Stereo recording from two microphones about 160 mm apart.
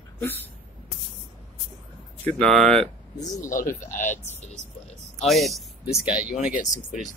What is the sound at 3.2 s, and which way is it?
Speech, 20° left (ahead or behind).